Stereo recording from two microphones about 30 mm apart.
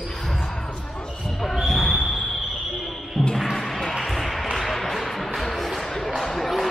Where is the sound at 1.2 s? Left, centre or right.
Centre.